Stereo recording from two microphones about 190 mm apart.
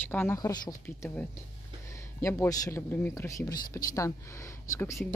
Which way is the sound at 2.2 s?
15° left (ahead or behind).